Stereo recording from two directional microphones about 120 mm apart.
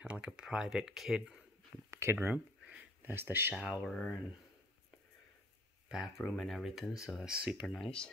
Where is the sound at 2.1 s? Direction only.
10° right (ahead or behind).